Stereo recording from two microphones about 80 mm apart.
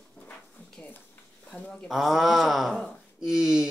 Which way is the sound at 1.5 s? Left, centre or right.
Centre.